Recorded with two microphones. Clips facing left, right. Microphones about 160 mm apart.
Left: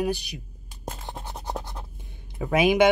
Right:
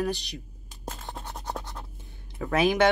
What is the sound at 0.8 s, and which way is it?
Writing, 10° left (ahead or behind).